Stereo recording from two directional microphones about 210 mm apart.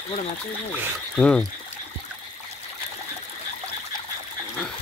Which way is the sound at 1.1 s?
5° left (ahead or behind).